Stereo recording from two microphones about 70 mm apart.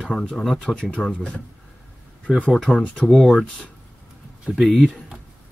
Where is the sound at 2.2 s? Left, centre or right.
Centre.